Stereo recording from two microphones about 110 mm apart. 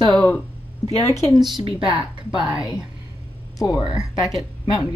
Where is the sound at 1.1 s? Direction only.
30° left (ahead or behind).